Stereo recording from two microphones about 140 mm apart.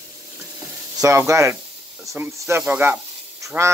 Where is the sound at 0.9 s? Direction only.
20° right (ahead or behind).